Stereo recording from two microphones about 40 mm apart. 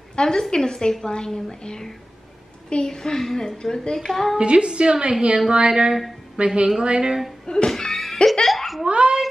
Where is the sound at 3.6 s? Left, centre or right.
Centre.